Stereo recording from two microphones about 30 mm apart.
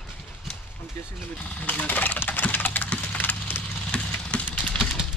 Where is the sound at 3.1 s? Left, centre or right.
Left.